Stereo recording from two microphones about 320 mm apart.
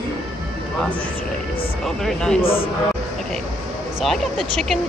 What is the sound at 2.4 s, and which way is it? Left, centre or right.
Speech, centre.